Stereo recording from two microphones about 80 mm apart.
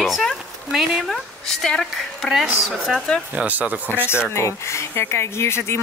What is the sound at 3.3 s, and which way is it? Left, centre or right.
Speech, centre.